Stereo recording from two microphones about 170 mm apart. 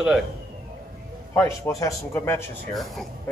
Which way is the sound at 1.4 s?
15° left (ahead or behind).